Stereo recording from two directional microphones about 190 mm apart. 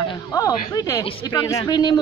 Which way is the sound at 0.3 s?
20° left (ahead or behind).